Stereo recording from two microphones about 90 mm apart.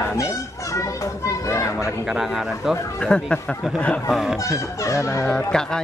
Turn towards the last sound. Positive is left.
turn(degrees=5)  # may be behind; listen again after turning